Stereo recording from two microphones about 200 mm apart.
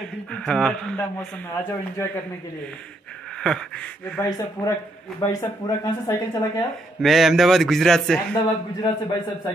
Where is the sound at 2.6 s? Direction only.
5° left (ahead or behind).